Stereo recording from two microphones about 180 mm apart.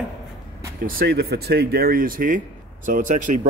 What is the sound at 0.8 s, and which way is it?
Speech, 55° right (ahead or behind).